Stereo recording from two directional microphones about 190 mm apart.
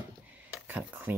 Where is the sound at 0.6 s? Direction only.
10° right (ahead or behind).